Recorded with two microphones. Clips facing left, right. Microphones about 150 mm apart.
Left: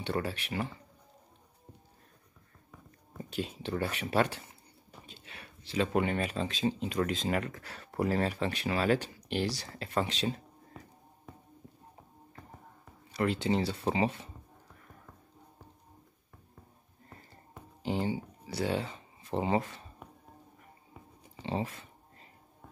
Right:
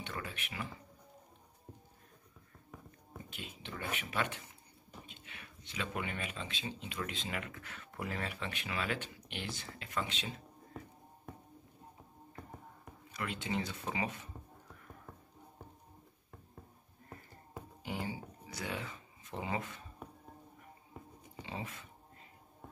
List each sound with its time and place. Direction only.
0.0 s speech: 35° left (ahead or behind)
3.3 s speech: 35° left (ahead or behind)
13.1 s speech: 35° left (ahead or behind)
17.8 s a sound: 30° left (ahead or behind)
21.5 s speech: 35° left (ahead or behind)